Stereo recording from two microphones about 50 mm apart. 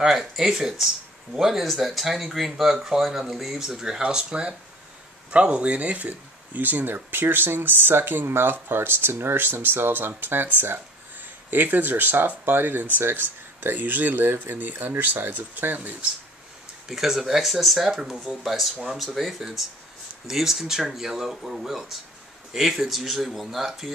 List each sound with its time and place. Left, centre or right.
0.0 s speech: centre; by 16.1 s right
16.8 s speech: centre